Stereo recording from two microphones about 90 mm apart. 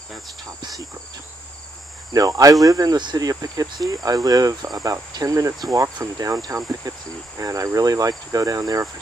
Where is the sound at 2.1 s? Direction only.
40° right (ahead or behind).